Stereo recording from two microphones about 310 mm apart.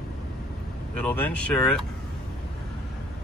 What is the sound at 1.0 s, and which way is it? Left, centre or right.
Speech, centre.